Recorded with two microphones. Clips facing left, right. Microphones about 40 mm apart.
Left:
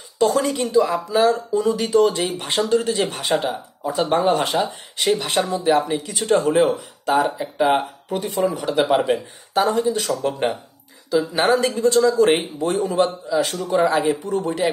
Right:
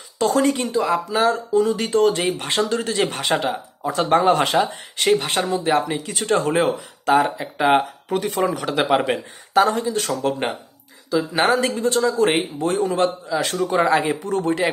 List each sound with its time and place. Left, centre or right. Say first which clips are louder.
0.2 s speech: even; right
5.1 s a man's voice: right 1 dB; right
11.6 s a man's voice: left 3 dB; right
14.2 s speech: right 1 dB; right